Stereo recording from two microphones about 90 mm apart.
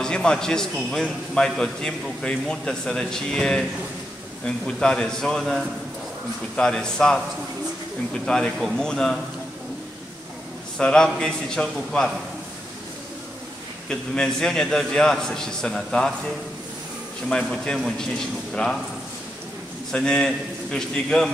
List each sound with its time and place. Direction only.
0.0 s a man's voice: 10° left (ahead or behind)
8.3 s speech: 5° left (ahead or behind)
10.8 s a man's voice: 5° left (ahead or behind)
13.8 s a man's voice: 10° left (ahead or behind)
17.3 s a man's voice: 10° left (ahead or behind)
19.9 s a man's voice: 10° left (ahead or behind)